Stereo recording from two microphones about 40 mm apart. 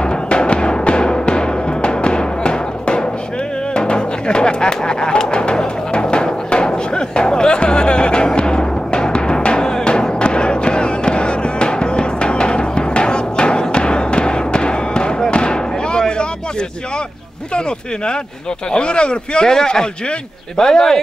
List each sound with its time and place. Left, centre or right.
0.0 s music: left
15.3 s fireworks: left
18.7 s speech: left